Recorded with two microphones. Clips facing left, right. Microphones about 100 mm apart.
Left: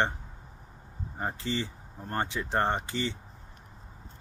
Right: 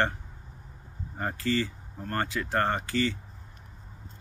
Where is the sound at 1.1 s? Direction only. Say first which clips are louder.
Right 4 dB; 20° left (ahead or behind).